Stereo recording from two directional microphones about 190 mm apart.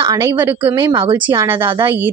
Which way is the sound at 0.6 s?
20° right (ahead or behind).